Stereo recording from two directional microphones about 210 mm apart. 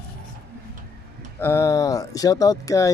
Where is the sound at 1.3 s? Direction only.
10° left (ahead or behind).